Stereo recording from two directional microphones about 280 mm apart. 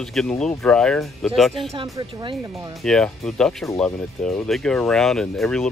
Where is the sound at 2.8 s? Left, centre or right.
Centre.